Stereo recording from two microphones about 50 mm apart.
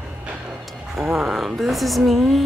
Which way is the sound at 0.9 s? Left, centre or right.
Centre.